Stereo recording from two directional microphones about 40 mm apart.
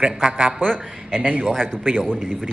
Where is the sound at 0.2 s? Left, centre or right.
Right.